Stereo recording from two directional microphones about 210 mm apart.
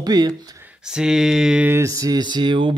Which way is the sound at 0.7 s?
5° right (ahead or behind).